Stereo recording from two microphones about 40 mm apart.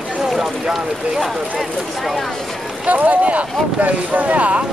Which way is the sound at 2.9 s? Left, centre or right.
Right.